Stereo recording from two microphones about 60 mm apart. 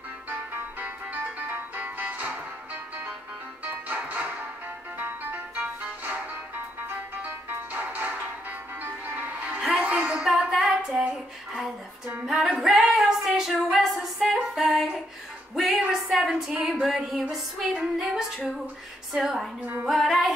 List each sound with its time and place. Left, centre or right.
0.3 s music: right
3.6 s music: right
7.7 s music: right
10.2 s female singing: centre
12.4 s singing: centre
13.7 s female singing: centre
15.5 s music: centre
15.9 s a sound: centre
16.8 s music: centre